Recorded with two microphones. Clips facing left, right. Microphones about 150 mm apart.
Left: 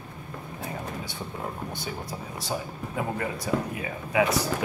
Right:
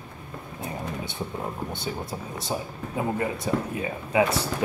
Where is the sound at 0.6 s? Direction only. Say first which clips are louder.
Right 3 dB; 25° right (ahead or behind).